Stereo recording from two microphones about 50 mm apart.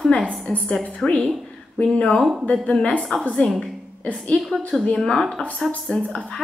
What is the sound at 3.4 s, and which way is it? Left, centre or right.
Speech, centre.